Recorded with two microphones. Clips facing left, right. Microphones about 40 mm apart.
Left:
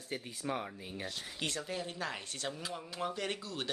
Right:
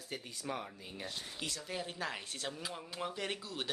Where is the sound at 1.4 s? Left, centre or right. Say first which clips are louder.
Left 4 dB; left.